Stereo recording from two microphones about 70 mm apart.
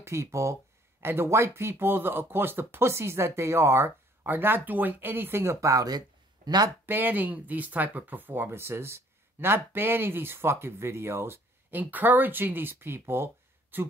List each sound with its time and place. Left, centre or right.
0.0 s speech: right
4.2 s speech: right
5.9 s a sound: right
6.9 s speech: right
11.8 s speech: right